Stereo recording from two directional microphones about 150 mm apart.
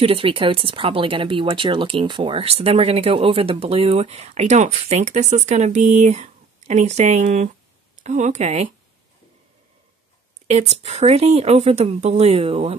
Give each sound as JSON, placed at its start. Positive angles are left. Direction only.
{"t": 0.0, "sound": "speech", "side_deg": -40}
{"t": 10.4, "sound": "speech", "side_deg": -45}